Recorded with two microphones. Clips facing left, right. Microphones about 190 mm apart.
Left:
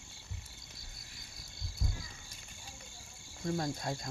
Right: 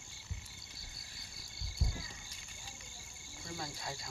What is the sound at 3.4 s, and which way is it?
Speech, 45° left (ahead or behind).